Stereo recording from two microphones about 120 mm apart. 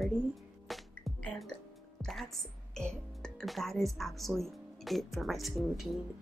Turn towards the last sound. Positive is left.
turn(degrees=0)  # may be behind; listen again after turning